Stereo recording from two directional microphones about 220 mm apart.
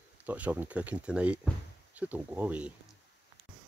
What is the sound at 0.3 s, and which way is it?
Speech, 10° right (ahead or behind).